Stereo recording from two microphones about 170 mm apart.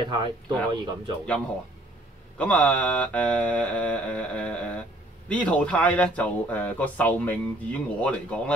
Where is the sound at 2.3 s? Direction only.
10° left (ahead or behind).